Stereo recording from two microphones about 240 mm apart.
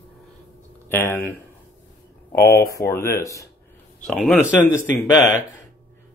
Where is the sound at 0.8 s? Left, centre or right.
Centre.